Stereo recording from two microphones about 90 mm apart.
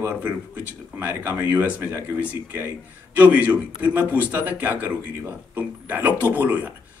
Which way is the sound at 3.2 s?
20° right (ahead or behind).